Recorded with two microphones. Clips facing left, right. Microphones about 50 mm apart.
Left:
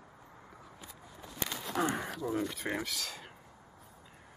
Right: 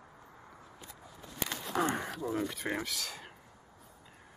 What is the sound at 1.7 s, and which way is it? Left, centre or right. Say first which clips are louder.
Speech: right 1 dB; centre.